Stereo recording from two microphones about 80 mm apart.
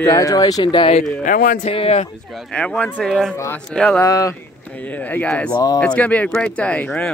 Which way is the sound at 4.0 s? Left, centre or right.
Left.